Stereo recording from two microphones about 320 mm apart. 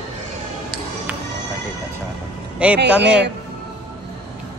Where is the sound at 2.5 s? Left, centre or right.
Centre.